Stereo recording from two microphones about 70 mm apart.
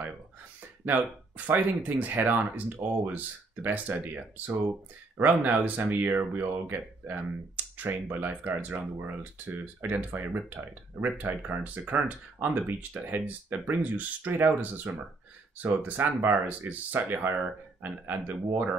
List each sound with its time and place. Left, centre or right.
0.9 s speech: right